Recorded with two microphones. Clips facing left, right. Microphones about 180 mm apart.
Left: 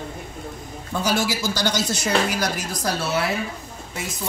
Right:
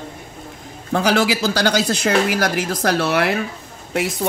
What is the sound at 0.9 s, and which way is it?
A man's voice, 70° right (ahead or behind).